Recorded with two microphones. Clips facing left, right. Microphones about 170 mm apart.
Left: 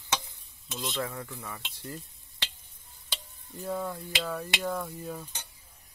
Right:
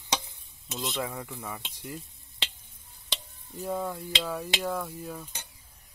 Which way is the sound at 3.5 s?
10° right (ahead or behind).